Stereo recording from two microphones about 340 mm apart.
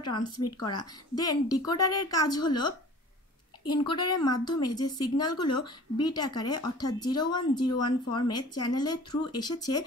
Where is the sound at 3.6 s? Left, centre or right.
Centre.